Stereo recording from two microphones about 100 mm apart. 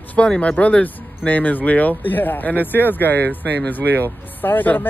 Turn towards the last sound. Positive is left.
turn(degrees=15)  # may be behind; listen again after turning